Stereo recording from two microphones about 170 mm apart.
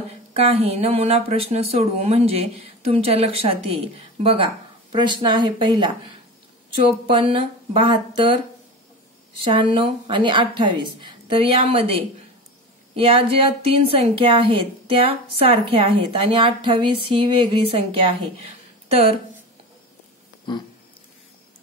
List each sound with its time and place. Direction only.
0.3 s a woman's voice: 35° right (ahead or behind)
7.1 s a woman's voice: 30° right (ahead or behind)
9.4 s a woman's voice: 30° right (ahead or behind)
12.9 s a woman's voice: 35° right (ahead or behind)
20.5 s a sound: 25° left (ahead or behind)